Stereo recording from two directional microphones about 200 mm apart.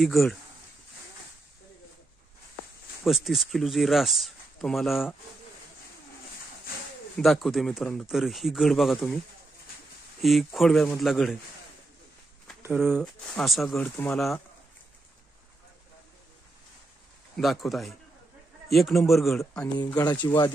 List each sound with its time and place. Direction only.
0.0 s speech: centre (ahead or behind)
3.1 s speech: centre (ahead or behind)
7.2 s speech: centre (ahead or behind)
10.2 s speech: centre (ahead or behind)
12.7 s speech: centre (ahead or behind)
17.4 s speech: centre (ahead or behind)
19.9 s speech: 20° left (ahead or behind)